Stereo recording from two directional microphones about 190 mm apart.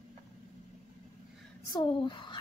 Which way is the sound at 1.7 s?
25° left (ahead or behind).